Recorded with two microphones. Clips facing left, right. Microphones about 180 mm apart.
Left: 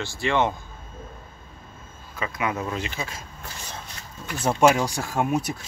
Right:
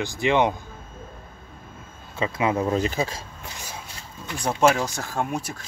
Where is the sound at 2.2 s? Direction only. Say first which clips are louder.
Right 5 dB; 25° right (ahead or behind).